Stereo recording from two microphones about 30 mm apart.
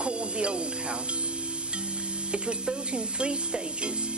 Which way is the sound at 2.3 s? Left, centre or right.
Right.